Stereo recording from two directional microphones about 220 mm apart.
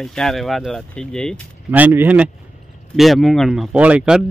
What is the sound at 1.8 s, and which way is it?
Speech, 5° right (ahead or behind).